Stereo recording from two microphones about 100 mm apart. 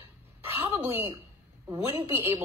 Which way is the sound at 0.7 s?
25° right (ahead or behind).